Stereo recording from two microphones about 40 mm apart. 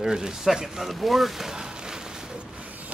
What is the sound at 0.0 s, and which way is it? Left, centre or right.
Speech, centre.